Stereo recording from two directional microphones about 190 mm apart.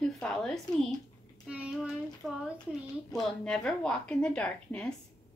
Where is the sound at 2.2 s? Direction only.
Centre (ahead or behind).